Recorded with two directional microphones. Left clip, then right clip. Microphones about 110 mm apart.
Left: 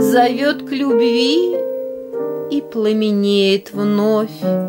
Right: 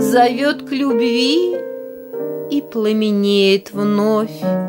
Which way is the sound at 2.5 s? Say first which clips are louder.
Right 1 dB; 20° right (ahead or behind).